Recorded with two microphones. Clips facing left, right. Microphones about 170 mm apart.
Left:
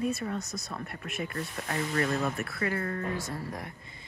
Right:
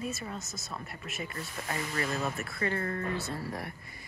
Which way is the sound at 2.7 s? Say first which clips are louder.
Left 1 dB; 35° right (ahead or behind).